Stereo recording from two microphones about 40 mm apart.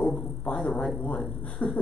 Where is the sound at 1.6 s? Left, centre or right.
Left.